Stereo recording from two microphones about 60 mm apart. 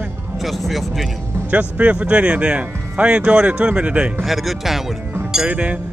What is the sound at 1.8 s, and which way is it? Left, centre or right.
Speech, right.